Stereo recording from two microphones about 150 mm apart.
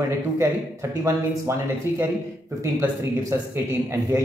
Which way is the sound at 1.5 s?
20° right (ahead or behind).